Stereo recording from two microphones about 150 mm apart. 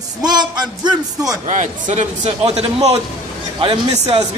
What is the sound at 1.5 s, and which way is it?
A man's voice, 55° right (ahead or behind).